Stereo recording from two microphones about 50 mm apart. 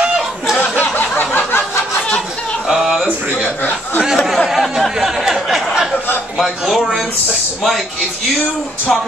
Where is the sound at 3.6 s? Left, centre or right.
Left.